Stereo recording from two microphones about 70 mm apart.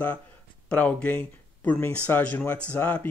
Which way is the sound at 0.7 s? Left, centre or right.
Centre.